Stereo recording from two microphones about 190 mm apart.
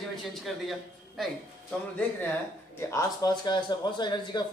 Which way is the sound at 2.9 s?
20° left (ahead or behind).